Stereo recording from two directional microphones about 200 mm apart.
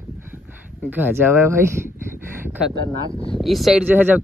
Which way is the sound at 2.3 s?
10° right (ahead or behind).